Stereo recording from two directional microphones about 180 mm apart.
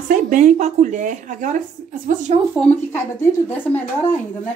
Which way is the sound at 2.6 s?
10° left (ahead or behind).